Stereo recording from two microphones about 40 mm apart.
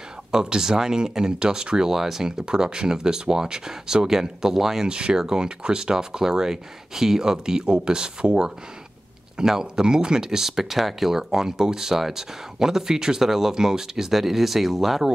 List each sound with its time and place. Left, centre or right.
0.3 s speech: centre
7.6 s speech: right; by 15.0 s centre